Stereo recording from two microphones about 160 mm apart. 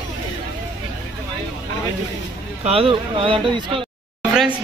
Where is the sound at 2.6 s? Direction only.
35° right (ahead or behind).